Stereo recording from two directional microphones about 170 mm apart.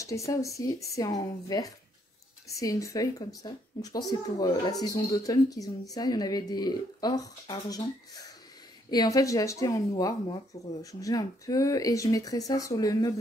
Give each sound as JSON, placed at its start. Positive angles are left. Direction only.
{"t": 0.0, "sound": "speech", "side_deg": 20}